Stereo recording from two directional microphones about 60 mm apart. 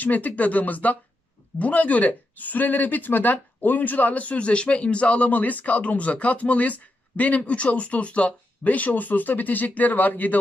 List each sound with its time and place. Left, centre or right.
0.0 s speech: left